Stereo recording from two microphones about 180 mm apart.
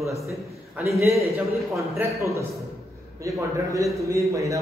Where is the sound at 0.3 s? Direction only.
15° right (ahead or behind).